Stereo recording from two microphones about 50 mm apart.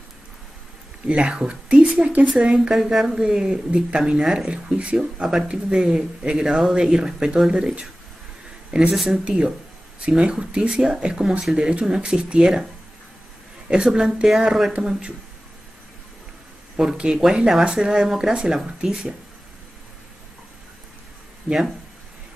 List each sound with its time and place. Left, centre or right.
1.0 s a woman's voice: centre
2.7 s a woman's voice: centre
8.9 s speech: centre
9.2 s a woman's voice: centre
13.7 s speech: centre
16.7 s speech: centre
21.5 s speech: centre